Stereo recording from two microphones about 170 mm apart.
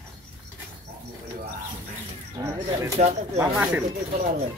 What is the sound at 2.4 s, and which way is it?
Bird, 15° right (ahead or behind).